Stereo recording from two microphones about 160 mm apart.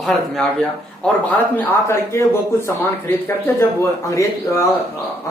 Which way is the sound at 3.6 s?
20° left (ahead or behind).